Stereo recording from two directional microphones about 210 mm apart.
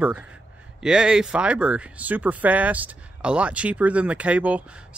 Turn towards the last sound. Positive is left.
turn(degrees=-5)  # may be behind; listen again after turning